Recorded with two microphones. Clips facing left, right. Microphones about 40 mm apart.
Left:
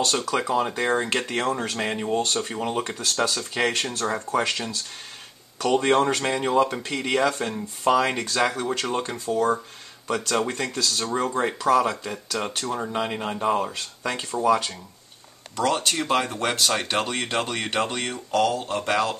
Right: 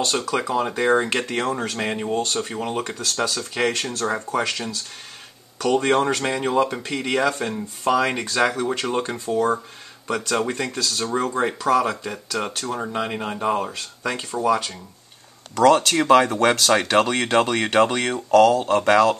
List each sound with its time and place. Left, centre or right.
0.0 s speech: centre
15.5 s speech: right